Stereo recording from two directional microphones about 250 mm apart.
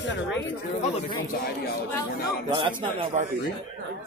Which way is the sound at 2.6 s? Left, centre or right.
Centre.